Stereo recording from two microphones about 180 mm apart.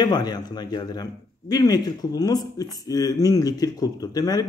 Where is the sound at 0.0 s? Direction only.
20° left (ahead or behind).